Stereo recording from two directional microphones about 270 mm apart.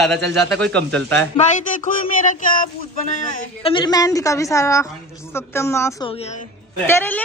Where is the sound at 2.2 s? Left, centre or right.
Left.